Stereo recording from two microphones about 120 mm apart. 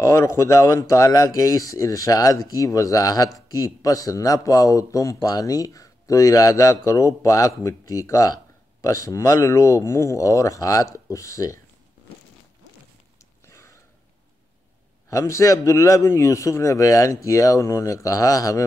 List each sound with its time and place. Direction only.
0.0 s speech: 25° left (ahead or behind)
13.5 s a sound: 25° left (ahead or behind)
15.0 s speech: 25° left (ahead or behind)